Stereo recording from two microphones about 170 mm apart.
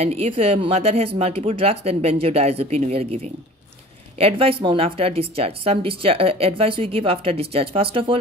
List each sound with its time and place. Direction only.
0.0 s a woman's voice: 35° right (ahead or behind)
4.2 s a woman's voice: 35° right (ahead or behind)